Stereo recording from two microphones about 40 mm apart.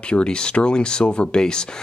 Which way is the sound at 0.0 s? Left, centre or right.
Left.